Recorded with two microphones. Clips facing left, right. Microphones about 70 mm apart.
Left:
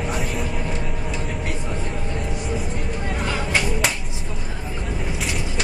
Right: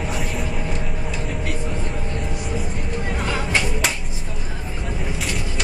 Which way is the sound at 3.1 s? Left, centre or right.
Centre.